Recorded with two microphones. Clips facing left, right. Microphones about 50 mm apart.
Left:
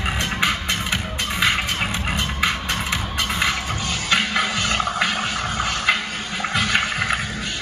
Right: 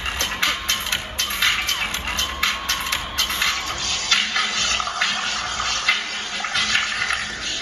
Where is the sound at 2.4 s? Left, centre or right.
Centre.